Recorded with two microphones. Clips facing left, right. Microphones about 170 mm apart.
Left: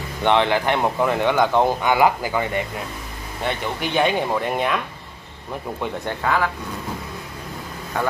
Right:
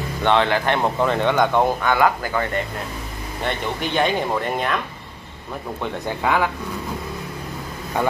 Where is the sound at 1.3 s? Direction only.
Centre (ahead or behind).